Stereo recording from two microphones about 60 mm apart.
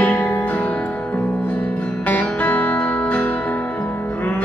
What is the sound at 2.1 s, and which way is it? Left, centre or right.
Music, left.